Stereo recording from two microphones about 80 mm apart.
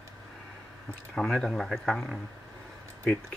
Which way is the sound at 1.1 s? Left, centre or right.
Centre.